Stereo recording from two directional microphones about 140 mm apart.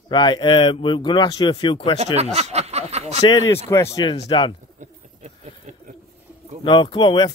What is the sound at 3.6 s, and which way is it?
Speech, 20° left (ahead or behind).